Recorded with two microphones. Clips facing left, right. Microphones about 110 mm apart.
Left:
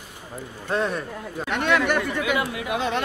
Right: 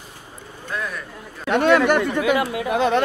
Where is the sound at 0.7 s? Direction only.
25° left (ahead or behind).